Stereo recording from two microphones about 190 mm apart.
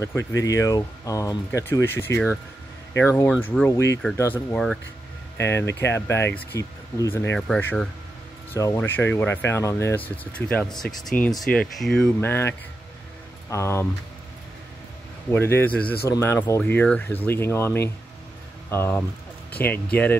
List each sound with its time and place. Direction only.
0.0 s speech: 15° left (ahead or behind)
8.5 s speech: 15° left (ahead or behind)
15.3 s speech: 10° left (ahead or behind)